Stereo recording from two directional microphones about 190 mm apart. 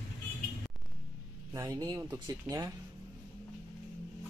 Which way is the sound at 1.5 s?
15° right (ahead or behind).